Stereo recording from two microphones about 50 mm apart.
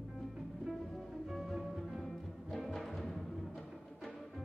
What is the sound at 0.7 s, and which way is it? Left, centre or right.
Music, centre.